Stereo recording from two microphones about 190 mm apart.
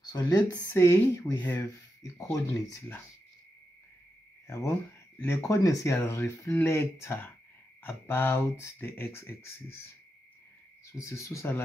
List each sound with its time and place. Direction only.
0.0 s speech: 20° left (ahead or behind)
4.5 s speech: 15° left (ahead or behind)
10.9 s speech: 15° left (ahead or behind)